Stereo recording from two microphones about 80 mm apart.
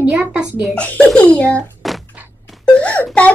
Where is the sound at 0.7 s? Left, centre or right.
Centre.